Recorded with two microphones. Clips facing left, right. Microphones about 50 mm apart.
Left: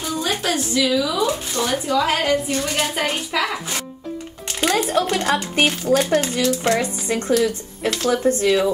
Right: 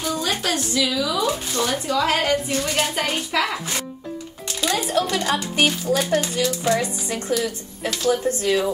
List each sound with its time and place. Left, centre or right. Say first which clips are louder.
0.0 s a woman's voice: left 1 dB; centre
4.5 s music: left 4 dB; left
4.9 s speech: left 2 dB; left